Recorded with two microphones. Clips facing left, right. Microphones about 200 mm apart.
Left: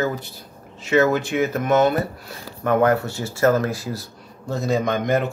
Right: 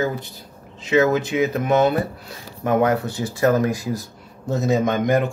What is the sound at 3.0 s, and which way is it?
Speech, 15° right (ahead or behind).